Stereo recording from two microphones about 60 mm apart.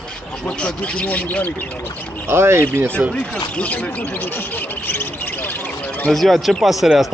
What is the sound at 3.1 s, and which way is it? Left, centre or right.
Speech, centre.